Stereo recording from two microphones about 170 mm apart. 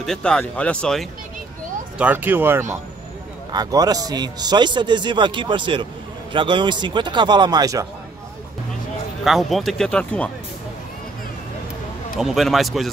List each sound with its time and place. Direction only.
0.0 s speech: 5° left (ahead or behind)
2.0 s a man's voice: 10° right (ahead or behind)
9.2 s speech: centre (ahead or behind)
12.2 s speech: centre (ahead or behind)